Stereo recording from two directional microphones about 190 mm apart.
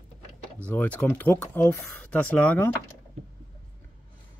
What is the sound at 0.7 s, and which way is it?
Speech, 10° left (ahead or behind).